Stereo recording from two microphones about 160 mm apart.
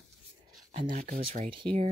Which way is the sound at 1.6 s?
35° right (ahead or behind).